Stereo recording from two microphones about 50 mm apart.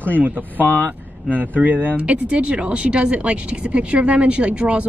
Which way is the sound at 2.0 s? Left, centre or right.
Right.